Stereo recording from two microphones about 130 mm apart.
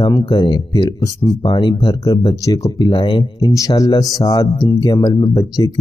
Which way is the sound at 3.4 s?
25° left (ahead or behind).